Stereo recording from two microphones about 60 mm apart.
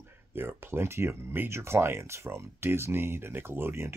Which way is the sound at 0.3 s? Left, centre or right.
Right.